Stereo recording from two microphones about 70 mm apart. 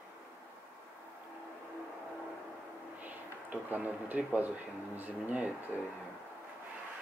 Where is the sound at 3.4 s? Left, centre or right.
Right.